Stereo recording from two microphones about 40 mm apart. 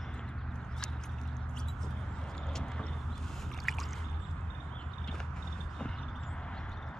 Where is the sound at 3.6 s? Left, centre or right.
Centre.